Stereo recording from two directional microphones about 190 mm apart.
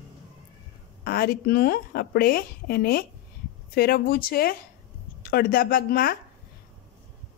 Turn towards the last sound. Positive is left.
turn(degrees=50)  # may be behind; listen again after turning